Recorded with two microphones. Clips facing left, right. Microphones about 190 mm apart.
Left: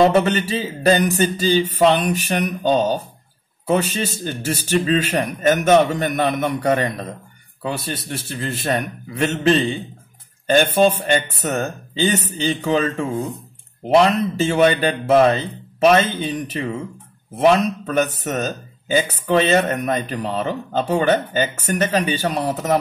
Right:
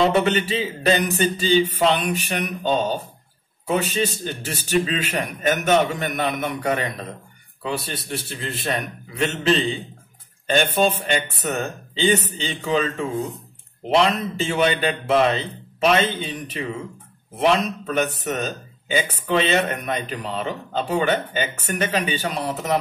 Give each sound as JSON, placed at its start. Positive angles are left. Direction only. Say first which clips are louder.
{"t": 0.1, "sound": "speech", "louder": "left 2 dB", "side_deg": 40}